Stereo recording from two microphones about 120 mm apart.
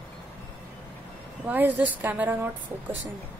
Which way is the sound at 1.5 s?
15° right (ahead or behind).